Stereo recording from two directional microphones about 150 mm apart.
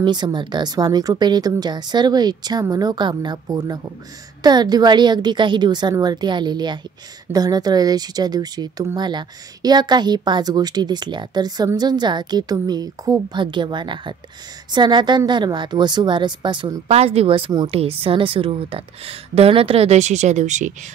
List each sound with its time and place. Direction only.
0.0 s a woman's voice: 30° right (ahead or behind)
16.8 s a woman's voice: 45° right (ahead or behind)